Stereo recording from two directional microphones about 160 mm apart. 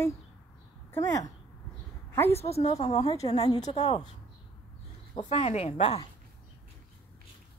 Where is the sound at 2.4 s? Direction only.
40° left (ahead or behind).